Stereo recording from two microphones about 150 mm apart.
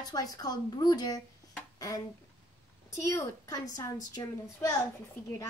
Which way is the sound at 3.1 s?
20° left (ahead or behind).